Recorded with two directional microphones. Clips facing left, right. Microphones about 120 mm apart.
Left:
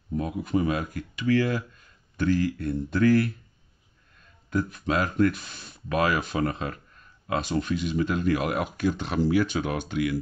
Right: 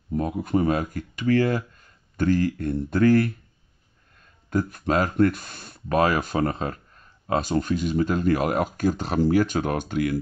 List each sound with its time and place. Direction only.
0.2 s speech: 50° right (ahead or behind)
4.5 s speech: 45° right (ahead or behind)